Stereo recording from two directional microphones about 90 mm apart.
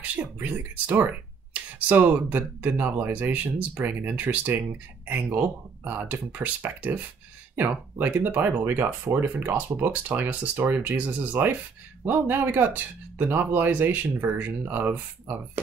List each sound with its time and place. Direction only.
0.0 s speech: 20° right (ahead or behind)
8.0 s speech: 20° right (ahead or behind)